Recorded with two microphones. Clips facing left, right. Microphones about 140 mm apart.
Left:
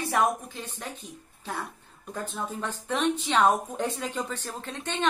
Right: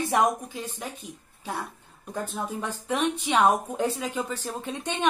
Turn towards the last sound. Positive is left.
turn(degrees=-15)  # may be behind; listen again after turning